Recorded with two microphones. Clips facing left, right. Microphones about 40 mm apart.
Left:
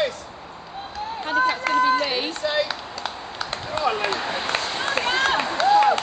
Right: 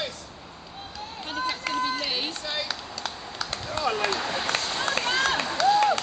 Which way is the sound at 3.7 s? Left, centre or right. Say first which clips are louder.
Left 3 dB; left.